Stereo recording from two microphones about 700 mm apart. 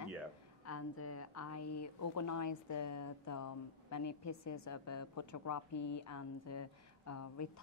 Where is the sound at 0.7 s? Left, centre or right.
Centre.